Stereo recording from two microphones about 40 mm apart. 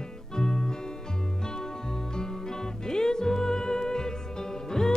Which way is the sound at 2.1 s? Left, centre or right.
Centre.